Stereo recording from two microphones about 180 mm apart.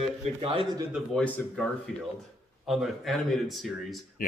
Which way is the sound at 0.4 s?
30° right (ahead or behind).